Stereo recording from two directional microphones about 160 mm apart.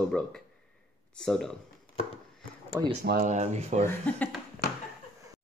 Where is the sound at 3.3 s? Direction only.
45° right (ahead or behind).